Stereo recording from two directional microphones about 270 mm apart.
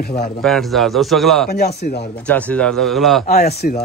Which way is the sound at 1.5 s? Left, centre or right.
Left.